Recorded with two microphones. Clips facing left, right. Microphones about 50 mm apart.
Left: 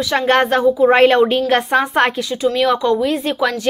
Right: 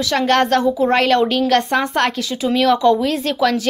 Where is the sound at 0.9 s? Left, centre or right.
Left.